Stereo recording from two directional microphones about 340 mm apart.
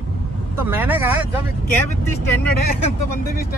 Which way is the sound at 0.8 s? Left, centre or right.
Centre.